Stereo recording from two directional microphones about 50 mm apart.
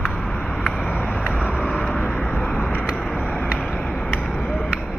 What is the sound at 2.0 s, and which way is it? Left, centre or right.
Vehicle, left.